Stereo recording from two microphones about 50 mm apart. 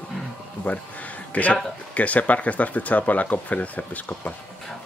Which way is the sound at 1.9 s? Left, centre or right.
Left.